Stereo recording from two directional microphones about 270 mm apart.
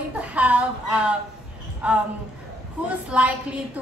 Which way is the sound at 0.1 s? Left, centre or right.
Centre.